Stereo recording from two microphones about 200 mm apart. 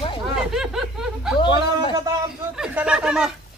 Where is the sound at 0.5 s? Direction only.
Centre (ahead or behind).